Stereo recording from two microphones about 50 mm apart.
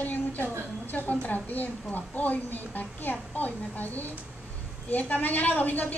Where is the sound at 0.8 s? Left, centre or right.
Left.